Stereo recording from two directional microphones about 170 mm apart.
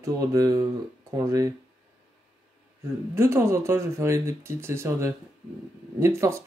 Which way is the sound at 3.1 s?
15° right (ahead or behind).